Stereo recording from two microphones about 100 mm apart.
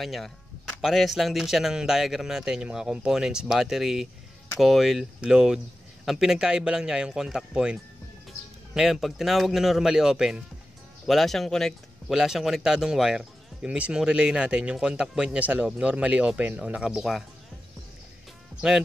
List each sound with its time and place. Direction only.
0.0 s speech: centre (ahead or behind)